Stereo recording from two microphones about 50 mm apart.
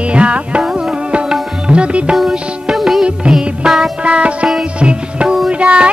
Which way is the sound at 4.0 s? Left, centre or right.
Right.